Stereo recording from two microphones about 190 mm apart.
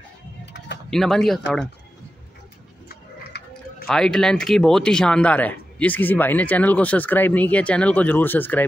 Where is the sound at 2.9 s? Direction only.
60° left (ahead or behind).